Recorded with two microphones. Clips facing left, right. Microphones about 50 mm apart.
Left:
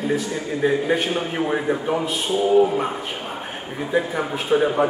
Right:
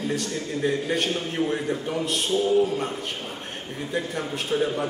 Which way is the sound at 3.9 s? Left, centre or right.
Centre.